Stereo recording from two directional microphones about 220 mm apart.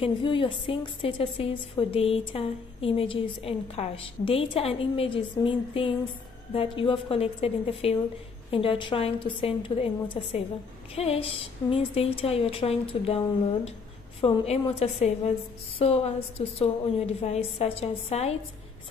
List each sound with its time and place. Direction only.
0.0 s a woman's voice: 20° left (ahead or behind)
14.2 s a woman's voice: 25° left (ahead or behind)